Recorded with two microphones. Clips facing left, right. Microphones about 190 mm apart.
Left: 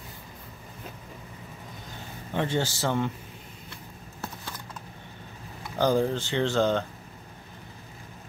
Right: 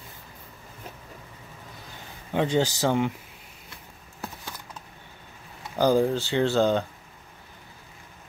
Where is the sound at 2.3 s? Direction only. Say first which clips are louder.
Right 4 dB; 15° right (ahead or behind).